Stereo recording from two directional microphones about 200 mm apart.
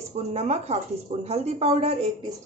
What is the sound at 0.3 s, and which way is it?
Speech, 35° right (ahead or behind).